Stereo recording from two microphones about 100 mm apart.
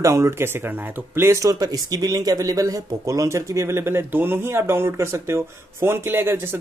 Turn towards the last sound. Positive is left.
turn(degrees=-25)  # may be behind; listen again after turning